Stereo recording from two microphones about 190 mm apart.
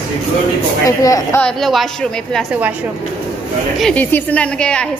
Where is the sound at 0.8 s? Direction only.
15° left (ahead or behind).